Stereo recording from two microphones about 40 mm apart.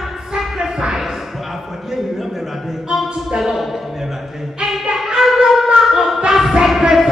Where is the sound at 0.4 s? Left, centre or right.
Centre.